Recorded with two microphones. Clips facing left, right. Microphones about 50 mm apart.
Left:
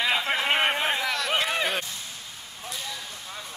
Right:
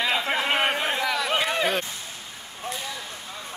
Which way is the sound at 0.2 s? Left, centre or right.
Centre.